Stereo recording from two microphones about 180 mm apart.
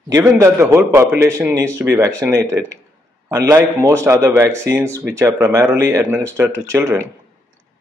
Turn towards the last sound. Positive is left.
turn(degrees=-15)  # may be behind; listen again after turning